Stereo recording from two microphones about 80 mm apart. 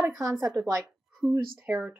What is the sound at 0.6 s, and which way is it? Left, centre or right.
Speech, centre.